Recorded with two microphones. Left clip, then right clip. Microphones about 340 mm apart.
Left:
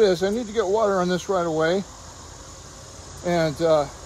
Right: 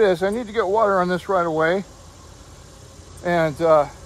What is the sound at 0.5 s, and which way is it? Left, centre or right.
Speech, centre.